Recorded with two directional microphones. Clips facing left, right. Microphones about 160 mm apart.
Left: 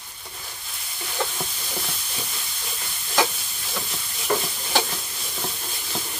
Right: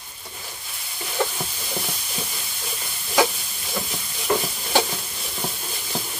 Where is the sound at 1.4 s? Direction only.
5° right (ahead or behind).